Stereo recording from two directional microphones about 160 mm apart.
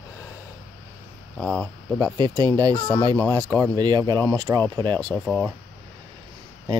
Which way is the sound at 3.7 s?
25° right (ahead or behind).